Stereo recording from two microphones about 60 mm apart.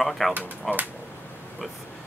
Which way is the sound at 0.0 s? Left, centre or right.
Centre.